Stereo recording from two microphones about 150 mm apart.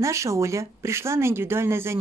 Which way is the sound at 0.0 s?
20° right (ahead or behind).